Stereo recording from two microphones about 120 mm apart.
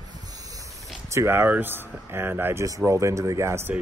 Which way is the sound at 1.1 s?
20° right (ahead or behind).